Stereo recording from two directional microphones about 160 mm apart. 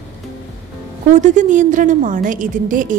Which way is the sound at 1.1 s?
50° right (ahead or behind).